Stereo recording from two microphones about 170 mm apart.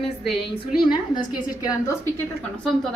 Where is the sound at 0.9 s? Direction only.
25° left (ahead or behind).